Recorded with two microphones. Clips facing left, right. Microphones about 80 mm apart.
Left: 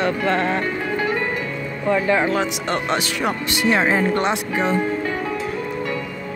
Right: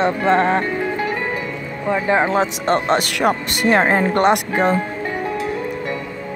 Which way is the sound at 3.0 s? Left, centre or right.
Right.